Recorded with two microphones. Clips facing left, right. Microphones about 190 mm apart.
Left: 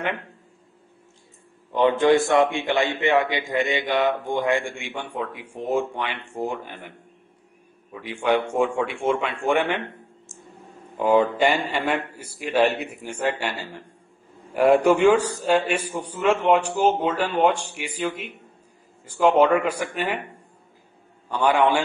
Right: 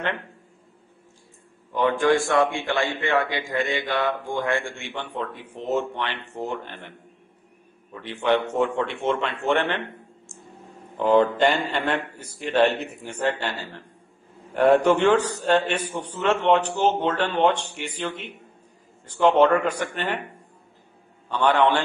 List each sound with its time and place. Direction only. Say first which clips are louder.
1.7 s a man's voice: left 3 dB; 20° left (ahead or behind)
7.9 s a man's voice: even; 10° left (ahead or behind)
11.0 s a man's voice: even; 10° left (ahead or behind)
21.3 s a man's voice: even; 10° left (ahead or behind)